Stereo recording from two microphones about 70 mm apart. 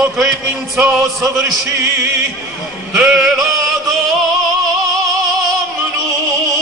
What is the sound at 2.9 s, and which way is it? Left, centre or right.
Music, centre.